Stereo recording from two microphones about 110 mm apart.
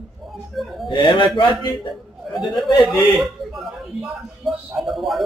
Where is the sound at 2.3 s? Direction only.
Centre (ahead or behind).